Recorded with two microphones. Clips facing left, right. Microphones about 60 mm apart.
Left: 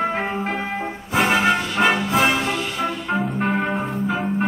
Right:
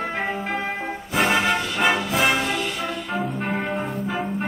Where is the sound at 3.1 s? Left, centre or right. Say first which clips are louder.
Left 4 dB; centre.